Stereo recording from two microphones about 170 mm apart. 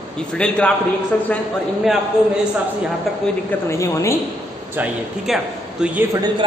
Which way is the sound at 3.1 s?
Centre (ahead or behind).